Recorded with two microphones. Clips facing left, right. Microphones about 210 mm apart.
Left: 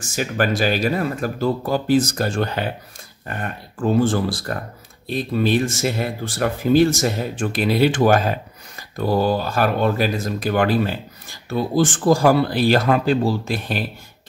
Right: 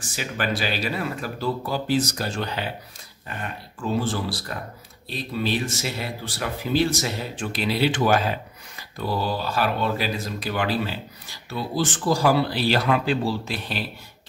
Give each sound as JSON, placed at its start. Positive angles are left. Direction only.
{"t": 0.0, "sound": "speech", "side_deg": 45}